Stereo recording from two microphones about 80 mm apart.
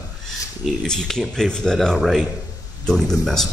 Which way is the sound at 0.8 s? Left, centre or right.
Centre.